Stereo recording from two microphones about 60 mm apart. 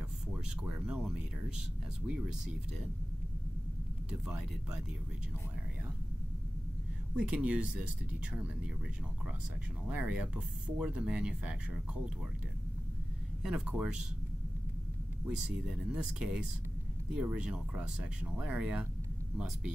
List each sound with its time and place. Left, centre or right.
0.3 s speech: right
2.0 s speech: centre
7.2 s speech: centre
9.8 s speech: right
13.4 s speech: centre
15.3 s speech: centre